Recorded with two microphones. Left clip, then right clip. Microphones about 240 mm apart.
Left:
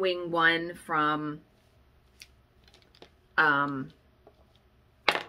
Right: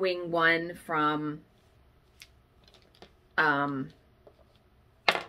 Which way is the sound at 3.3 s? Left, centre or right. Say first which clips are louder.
Left 2 dB; centre.